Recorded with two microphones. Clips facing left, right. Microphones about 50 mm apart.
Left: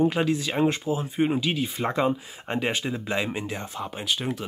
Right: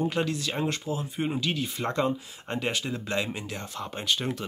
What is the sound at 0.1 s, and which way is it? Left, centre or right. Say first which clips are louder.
Speech: left 4 dB; centre.